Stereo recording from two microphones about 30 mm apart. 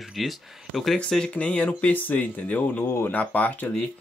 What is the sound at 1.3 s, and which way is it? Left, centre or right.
Speech, left.